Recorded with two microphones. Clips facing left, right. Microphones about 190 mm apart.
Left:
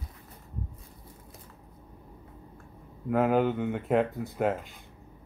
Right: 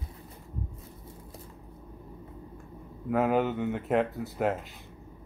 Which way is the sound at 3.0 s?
Centre (ahead or behind).